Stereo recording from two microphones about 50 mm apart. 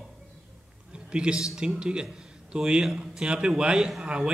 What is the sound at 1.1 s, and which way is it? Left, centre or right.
A man's voice, centre.